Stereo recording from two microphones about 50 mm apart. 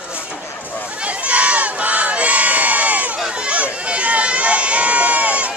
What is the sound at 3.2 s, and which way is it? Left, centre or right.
Crowd, centre.